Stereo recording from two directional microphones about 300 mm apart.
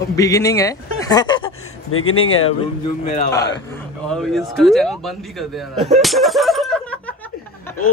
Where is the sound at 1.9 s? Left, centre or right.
Left.